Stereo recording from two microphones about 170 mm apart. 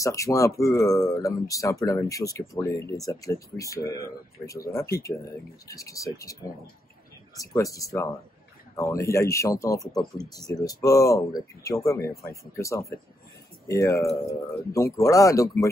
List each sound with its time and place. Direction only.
0.0 s speech: 20° left (ahead or behind)
7.3 s speech: 20° left (ahead or behind)